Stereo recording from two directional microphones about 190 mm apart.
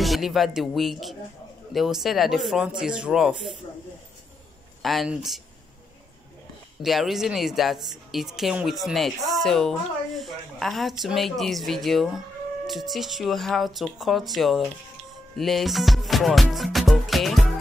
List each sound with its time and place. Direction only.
0.0 s a woman's voice: centre (ahead or behind)
4.8 s a woman's voice: centre (ahead or behind)
6.8 s a woman's voice: centre (ahead or behind)